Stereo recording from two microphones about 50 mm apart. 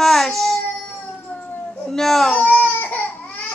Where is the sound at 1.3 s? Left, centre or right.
Left.